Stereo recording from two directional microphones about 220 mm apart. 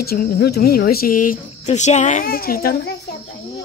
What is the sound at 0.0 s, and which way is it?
Speech, 45° left (ahead or behind).